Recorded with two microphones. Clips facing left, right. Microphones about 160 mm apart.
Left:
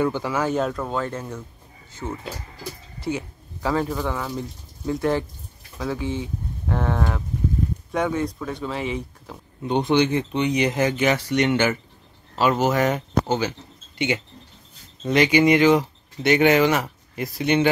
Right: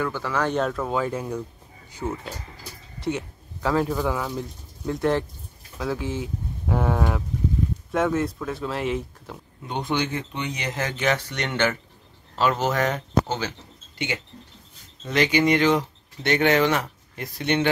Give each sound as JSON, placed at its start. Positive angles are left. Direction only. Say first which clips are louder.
{"t": 0.0, "sound": "speech", "louder": "left 3 dB", "side_deg": 15}
{"t": 3.0, "sound": "speech", "louder": "even", "side_deg": 0}
{"t": 9.6, "sound": "speech", "louder": "left 7 dB", "side_deg": 20}